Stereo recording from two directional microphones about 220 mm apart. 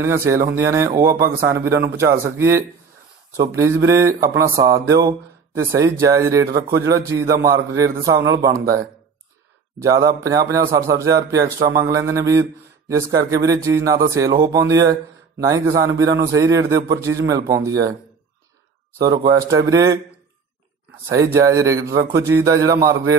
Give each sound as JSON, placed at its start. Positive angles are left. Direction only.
{"t": 0.0, "sound": "speech", "side_deg": -10}
{"t": 14.6, "sound": "speech", "side_deg": -50}
{"t": 14.9, "sound": "speech", "side_deg": -15}
{"t": 18.9, "sound": "speech", "side_deg": -15}
{"t": 21.1, "sound": "speech", "side_deg": -15}